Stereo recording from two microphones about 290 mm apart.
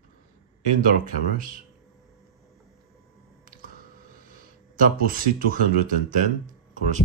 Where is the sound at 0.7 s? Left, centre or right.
Right.